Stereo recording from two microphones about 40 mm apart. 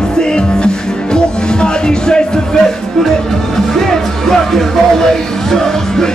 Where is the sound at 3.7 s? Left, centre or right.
Centre.